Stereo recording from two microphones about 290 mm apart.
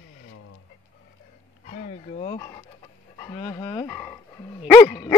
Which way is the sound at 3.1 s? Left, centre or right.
Centre.